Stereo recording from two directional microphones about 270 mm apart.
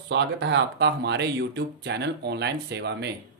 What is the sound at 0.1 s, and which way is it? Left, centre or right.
Speech, right.